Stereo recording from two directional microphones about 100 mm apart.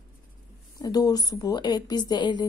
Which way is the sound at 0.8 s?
40° left (ahead or behind).